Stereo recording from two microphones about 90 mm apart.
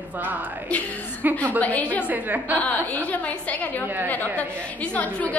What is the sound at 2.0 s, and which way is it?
Speech, 20° right (ahead or behind).